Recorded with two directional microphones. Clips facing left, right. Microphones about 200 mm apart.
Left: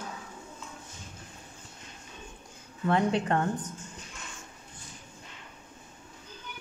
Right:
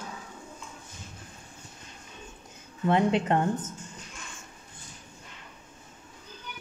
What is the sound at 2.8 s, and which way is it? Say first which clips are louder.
Speech: right 2 dB; 20° right (ahead or behind).